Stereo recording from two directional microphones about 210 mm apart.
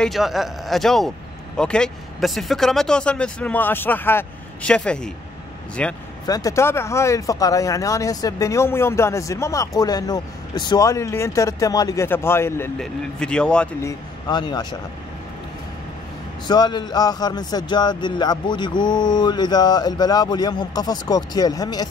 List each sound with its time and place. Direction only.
0.0 s speech: centre (ahead or behind)
6.2 s speech: 15° left (ahead or behind)
14.2 s a man's voice: 20° left (ahead or behind)
16.4 s a man's voice: 20° left (ahead or behind)